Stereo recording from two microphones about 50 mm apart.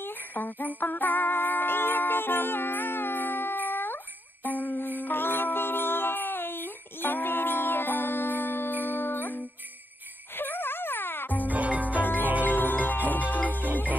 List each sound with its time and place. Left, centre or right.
0.0 s music: left
11.4 s music: right
12.4 s music: left